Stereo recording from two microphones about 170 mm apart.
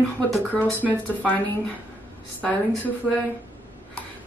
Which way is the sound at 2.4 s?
10° left (ahead or behind).